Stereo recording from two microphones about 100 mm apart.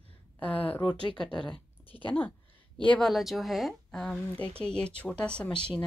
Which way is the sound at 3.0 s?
Centre (ahead or behind).